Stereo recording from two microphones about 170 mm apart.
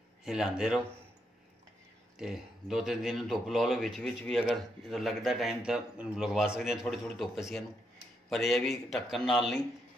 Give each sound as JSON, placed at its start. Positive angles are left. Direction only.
{"t": 0.2, "sound": "speech", "side_deg": -5}
{"t": 2.1, "sound": "speech", "side_deg": 0}